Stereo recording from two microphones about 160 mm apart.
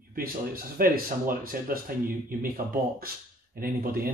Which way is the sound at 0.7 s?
65° right (ahead or behind).